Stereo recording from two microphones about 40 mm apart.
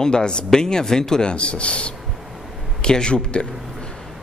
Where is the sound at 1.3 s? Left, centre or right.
Left.